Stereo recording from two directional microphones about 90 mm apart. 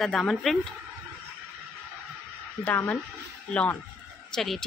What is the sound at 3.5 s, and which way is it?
Speech, 15° left (ahead or behind).